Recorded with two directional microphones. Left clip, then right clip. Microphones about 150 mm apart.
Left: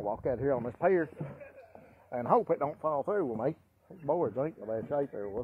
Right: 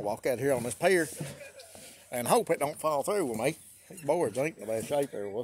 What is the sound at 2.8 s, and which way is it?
Speech, 25° right (ahead or behind).